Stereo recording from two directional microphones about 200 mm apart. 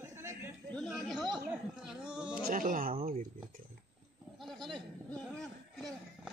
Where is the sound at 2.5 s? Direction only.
45° right (ahead or behind).